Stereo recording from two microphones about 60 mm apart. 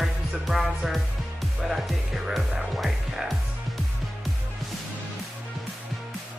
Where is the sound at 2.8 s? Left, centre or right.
Centre.